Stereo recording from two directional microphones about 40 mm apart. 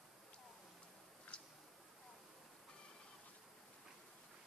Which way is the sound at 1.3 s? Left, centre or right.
Left.